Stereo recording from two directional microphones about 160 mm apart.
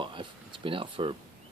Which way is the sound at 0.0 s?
30° right (ahead or behind).